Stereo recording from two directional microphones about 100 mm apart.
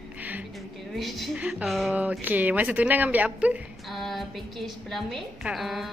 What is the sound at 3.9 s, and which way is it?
A woman's voice, centre (ahead or behind).